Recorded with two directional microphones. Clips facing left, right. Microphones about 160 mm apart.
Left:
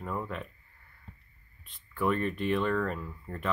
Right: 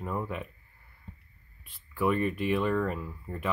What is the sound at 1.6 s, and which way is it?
Speech, 10° right (ahead or behind).